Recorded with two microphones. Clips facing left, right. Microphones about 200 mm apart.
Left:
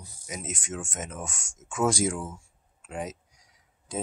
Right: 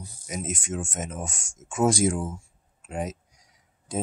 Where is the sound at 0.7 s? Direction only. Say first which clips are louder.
Right 4 dB; 40° right (ahead or behind).